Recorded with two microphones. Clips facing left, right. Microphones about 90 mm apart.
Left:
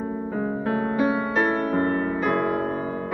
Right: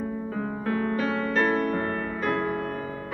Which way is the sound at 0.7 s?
20° left (ahead or behind).